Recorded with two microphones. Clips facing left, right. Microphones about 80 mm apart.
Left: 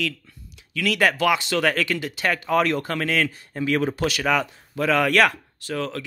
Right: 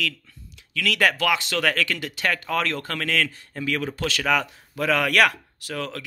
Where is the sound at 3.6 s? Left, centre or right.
Left.